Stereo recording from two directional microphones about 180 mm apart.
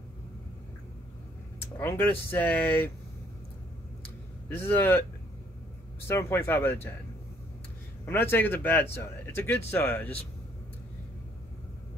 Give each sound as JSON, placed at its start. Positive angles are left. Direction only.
{"t": 1.8, "sound": "speech", "side_deg": 10}
{"t": 4.5, "sound": "speech", "side_deg": 10}
{"t": 6.0, "sound": "speech", "side_deg": 15}
{"t": 8.0, "sound": "speech", "side_deg": 10}